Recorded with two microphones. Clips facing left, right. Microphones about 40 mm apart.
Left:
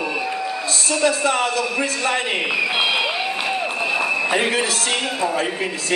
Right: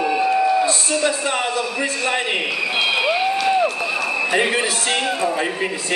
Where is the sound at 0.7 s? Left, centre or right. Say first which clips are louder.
Even; right.